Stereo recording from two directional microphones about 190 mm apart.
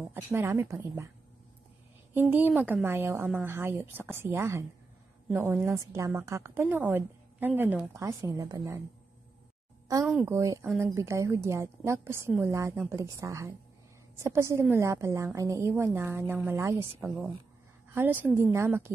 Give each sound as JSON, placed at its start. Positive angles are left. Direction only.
{"t": 0.1, "sound": "a woman's voice", "side_deg": -10}
{"t": 2.1, "sound": "a woman's voice", "side_deg": -10}
{"t": 9.8, "sound": "a woman's voice", "side_deg": -15}